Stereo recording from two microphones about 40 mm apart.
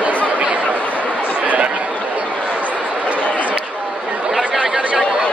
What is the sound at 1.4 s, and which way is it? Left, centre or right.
Chatter, right.